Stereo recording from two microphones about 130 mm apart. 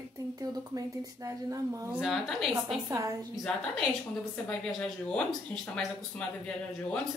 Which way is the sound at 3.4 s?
5° left (ahead or behind).